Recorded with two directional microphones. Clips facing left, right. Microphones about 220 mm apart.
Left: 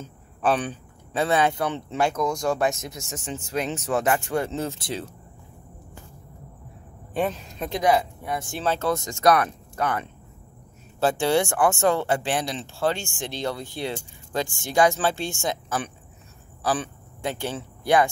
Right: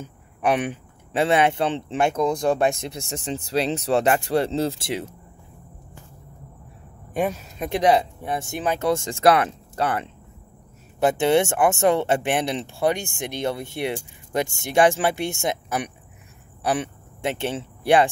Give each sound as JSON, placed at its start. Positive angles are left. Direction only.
{"t": 0.0, "sound": "a man's voice", "side_deg": -20}
{"t": 7.2, "sound": "speech", "side_deg": -10}
{"t": 7.8, "sound": "speech", "side_deg": -30}
{"t": 8.5, "sound": "speech", "side_deg": -15}
{"t": 8.9, "sound": "speech", "side_deg": -30}
{"t": 11.0, "sound": "speech", "side_deg": -20}